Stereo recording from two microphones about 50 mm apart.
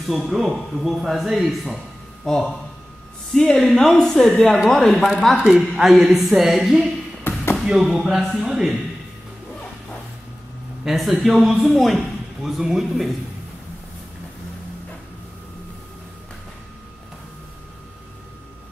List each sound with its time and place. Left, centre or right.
0.0 s speech: centre
7.3 s a sound: left
7.6 s speech: centre
10.8 s speech: centre